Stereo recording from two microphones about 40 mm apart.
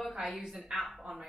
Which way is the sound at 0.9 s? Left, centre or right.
Centre.